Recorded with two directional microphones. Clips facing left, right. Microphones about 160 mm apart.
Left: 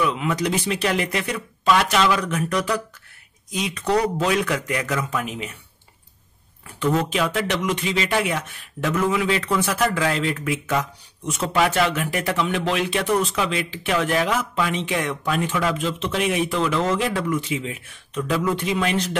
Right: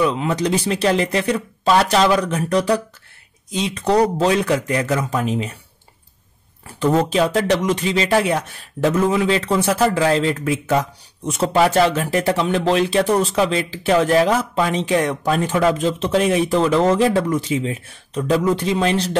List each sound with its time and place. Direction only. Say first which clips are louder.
0.0 s speech: right 4 dB; 30° right (ahead or behind)
6.8 s speech: right 5 dB; 35° right (ahead or behind)